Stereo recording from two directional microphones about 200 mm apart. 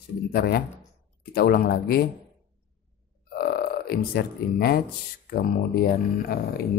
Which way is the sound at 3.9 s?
50° left (ahead or behind).